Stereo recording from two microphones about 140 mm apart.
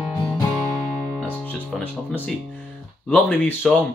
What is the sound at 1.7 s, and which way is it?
Music, 10° left (ahead or behind).